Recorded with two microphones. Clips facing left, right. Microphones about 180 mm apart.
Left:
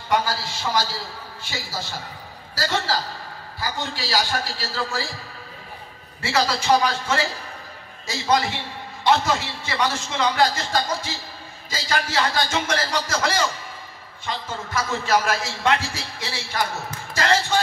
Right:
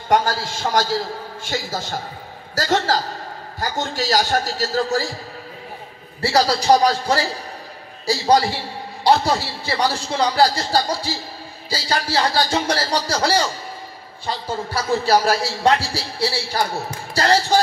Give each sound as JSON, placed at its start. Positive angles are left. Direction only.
{"t": 0.1, "sound": "a man's voice", "side_deg": -50}
{"t": 6.2, "sound": "a man's voice", "side_deg": -35}